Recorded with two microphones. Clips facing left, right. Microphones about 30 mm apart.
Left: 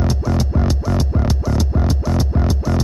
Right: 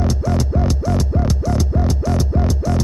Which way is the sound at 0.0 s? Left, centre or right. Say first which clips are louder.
Even; centre.